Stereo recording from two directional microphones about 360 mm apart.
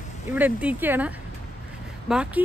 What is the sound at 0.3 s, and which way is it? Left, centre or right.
Speech, centre.